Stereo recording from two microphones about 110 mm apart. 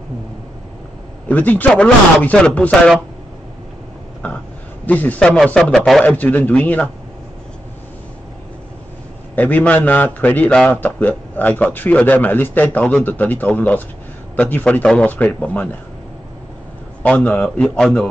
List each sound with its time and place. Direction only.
1.3 s a man's voice: 15° left (ahead or behind)
4.2 s a sound: 15° left (ahead or behind)
4.8 s a man's voice: 15° left (ahead or behind)
6.0 s a man's voice: 15° left (ahead or behind)
9.3 s a man's voice: 15° left (ahead or behind)
17.0 s a man's voice: 10° left (ahead or behind)